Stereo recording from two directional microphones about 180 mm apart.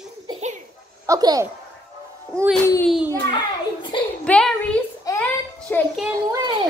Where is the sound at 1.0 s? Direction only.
20° right (ahead or behind).